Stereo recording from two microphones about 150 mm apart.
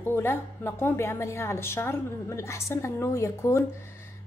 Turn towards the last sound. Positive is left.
turn(degrees=20)  # may be behind; listen again after turning